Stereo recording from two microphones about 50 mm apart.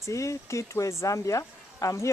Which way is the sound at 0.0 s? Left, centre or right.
Left.